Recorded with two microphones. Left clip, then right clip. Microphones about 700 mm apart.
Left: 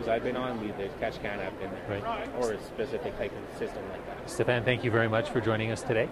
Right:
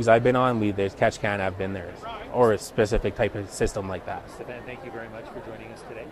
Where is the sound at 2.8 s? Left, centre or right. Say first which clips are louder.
Right 8 dB; right.